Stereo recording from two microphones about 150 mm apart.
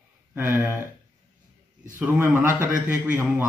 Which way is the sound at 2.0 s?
10° right (ahead or behind).